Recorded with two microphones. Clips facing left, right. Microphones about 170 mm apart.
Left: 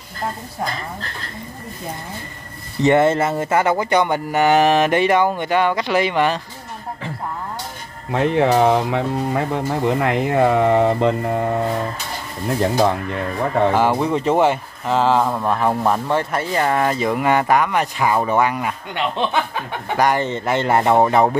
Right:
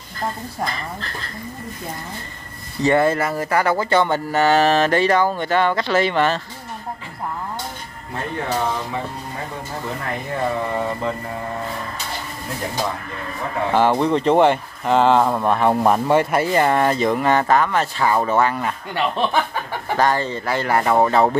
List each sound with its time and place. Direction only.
2.8 s speech: 20° left (ahead or behind)
8.1 s speech: 90° left; by 11.6 s 60° left (ahead or behind)
13.7 s speech: 10° left (ahead or behind)
15.7 s speech: 10° right (ahead or behind); by 18.8 s 10° left (ahead or behind)
18.9 s speech: centre (ahead or behind)
20.0 s speech: 20° left (ahead or behind)